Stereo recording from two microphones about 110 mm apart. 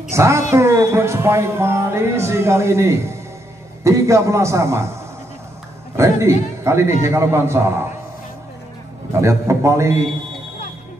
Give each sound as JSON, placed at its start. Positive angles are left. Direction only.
{"t": 0.1, "sound": "speech", "side_deg": -25}
{"t": 5.9, "sound": "speech", "side_deg": -25}
{"t": 9.2, "sound": "speech", "side_deg": -25}